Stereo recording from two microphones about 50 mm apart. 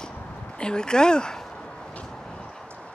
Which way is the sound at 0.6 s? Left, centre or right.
Centre.